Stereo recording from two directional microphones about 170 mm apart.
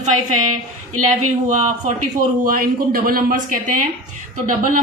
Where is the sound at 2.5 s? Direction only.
55° right (ahead or behind).